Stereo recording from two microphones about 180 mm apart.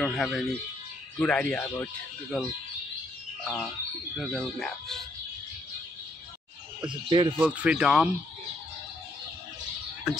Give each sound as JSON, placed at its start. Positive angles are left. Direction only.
{"t": 0.0, "sound": "speech", "side_deg": 0}
{"t": 6.9, "sound": "speech", "side_deg": -25}
{"t": 7.3, "sound": "speech", "side_deg": -5}
{"t": 10.1, "sound": "speech", "side_deg": -5}